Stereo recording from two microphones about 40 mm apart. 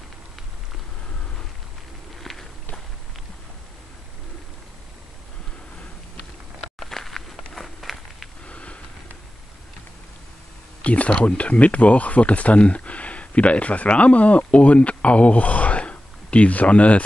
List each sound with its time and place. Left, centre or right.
2.3 s walk: centre
6.9 s walk: centre
8.5 s sniff: left
10.8 s a sound: left
11.1 s speech: left